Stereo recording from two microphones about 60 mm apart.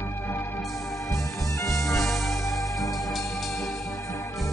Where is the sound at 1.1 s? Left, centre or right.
Left.